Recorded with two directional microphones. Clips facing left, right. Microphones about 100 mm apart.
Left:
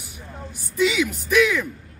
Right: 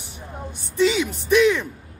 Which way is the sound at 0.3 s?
15° right (ahead or behind).